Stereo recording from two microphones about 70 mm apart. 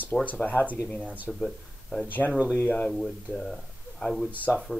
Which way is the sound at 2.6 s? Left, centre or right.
Left.